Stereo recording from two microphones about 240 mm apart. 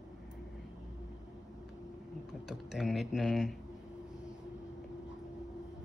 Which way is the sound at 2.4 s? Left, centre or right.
Centre.